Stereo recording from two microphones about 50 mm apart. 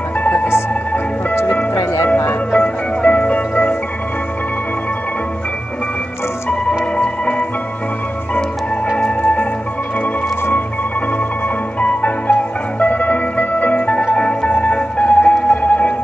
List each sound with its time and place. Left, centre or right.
0.2 s music: left
2.5 s music: left
7.0 s music: left
9.2 s music: left
11.8 s music: left